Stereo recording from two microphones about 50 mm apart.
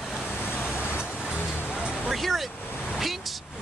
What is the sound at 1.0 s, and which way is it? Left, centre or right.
Vehicle, centre.